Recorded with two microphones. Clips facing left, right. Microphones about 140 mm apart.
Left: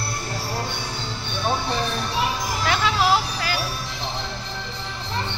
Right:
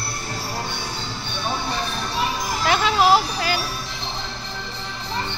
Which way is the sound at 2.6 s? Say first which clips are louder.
Right 4 dB; 25° right (ahead or behind).